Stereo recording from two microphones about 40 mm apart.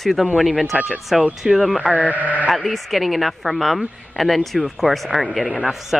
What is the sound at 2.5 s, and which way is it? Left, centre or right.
Speech, centre.